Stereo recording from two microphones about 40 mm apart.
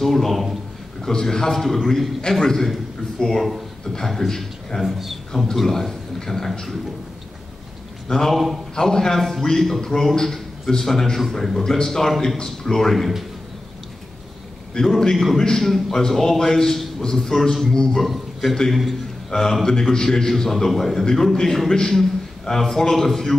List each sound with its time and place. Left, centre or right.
0.0 s a man's voice: centre
4.8 s a man's voice: centre
5.6 s a man's voice: centre
8.1 s a man's voice: centre
14.8 s a man's voice: left
15.1 s a man's voice: centre
18.0 s a man's voice: centre
19.3 s a man's voice: centre